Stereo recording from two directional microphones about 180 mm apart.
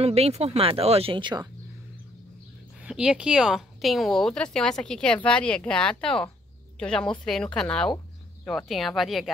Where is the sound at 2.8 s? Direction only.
5° right (ahead or behind).